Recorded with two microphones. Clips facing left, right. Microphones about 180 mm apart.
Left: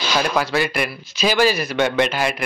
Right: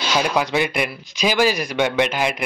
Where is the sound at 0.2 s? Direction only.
15° right (ahead or behind).